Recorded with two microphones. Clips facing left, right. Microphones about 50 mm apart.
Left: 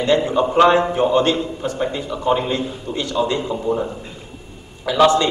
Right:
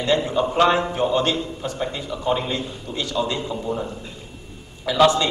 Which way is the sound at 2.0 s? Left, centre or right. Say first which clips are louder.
Left 4 dB; centre.